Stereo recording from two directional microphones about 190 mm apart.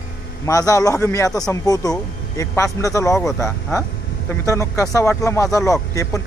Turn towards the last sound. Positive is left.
turn(degrees=15)  # may be behind; listen again after turning